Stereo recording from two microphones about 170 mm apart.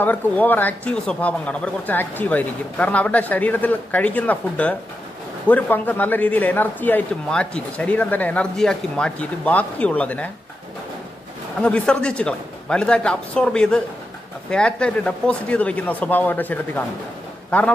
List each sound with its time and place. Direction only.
0.0 s a man's voice: 10° left (ahead or behind)
11.6 s a man's voice: 5° left (ahead or behind)